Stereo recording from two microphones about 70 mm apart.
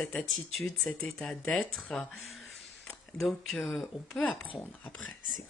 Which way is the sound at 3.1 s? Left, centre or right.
Centre.